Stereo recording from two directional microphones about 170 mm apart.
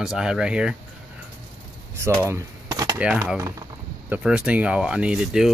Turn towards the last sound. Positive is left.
turn(degrees=-5)  # may be behind; listen again after turning